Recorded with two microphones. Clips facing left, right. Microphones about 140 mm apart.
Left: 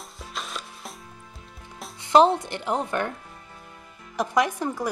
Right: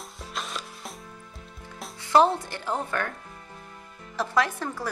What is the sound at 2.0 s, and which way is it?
Speech, 20° left (ahead or behind).